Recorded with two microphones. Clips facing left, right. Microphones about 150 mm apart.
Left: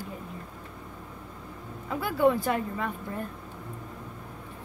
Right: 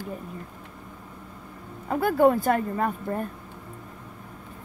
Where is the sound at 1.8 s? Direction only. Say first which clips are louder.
Right 4 dB; 50° right (ahead or behind).